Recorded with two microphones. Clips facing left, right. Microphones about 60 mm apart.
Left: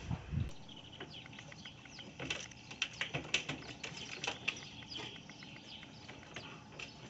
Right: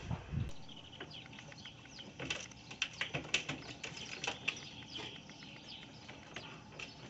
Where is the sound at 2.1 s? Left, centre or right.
Centre.